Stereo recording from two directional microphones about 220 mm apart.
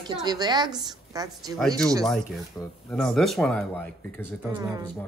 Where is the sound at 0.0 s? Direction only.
20° right (ahead or behind).